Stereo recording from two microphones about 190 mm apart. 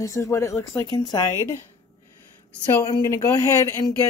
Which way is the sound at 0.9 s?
20° left (ahead or behind).